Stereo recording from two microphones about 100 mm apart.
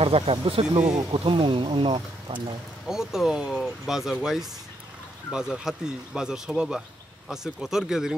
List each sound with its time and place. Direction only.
0.0 s speech: 75° right (ahead or behind)
1.1 s speech: 55° right (ahead or behind)
2.9 s speech: 5° right (ahead or behind)